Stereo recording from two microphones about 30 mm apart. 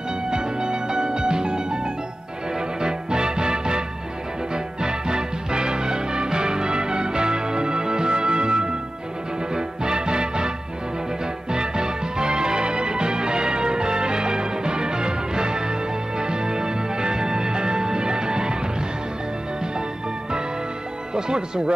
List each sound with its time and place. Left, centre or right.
0.3 s music: right
2.8 s music: right
4.8 s music: right
11.5 s music: right
21.1 s speech: right